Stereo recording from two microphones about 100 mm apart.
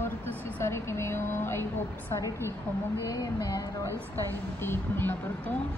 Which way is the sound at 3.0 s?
40° left (ahead or behind).